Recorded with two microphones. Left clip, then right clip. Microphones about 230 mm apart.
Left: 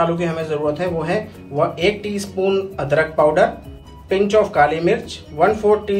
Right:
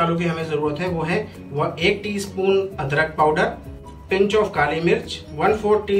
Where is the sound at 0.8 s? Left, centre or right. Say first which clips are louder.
Left 3 dB; centre.